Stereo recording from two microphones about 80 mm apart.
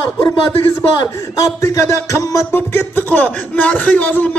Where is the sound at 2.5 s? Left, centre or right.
Left.